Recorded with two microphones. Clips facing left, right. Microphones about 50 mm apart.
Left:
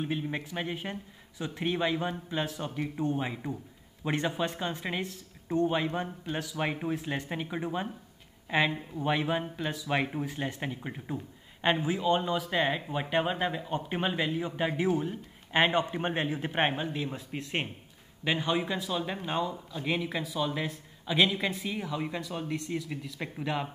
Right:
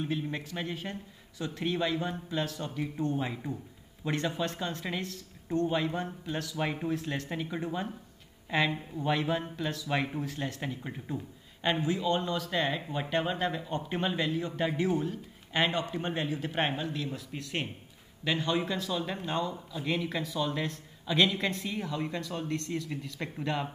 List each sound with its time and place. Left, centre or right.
0.0 s a man's voice: centre